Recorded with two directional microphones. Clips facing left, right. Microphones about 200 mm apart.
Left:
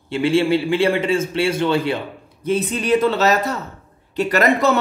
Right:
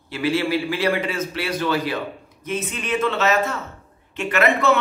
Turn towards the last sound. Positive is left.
turn(degrees=40)  # may be behind; listen again after turning